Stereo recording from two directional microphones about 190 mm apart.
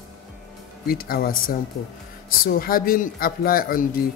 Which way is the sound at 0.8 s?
50° left (ahead or behind).